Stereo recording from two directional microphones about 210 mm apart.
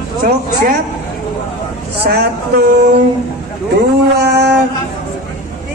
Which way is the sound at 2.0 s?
50° right (ahead or behind).